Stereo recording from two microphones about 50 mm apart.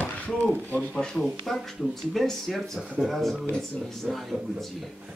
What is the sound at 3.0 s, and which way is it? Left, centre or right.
Speech, centre.